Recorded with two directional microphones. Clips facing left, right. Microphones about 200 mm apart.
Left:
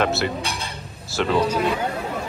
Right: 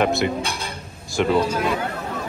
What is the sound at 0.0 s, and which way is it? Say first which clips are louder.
Speech: right 2 dB; 15° right (ahead or behind).